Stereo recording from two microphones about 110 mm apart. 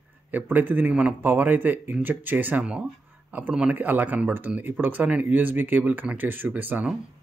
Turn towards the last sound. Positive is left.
turn(degrees=-15)  # may be behind; listen again after turning